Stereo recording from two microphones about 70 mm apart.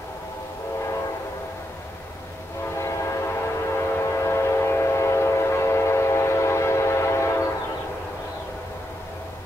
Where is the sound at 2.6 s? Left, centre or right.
Left.